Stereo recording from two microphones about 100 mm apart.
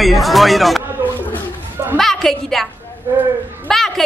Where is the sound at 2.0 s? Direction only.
Centre (ahead or behind).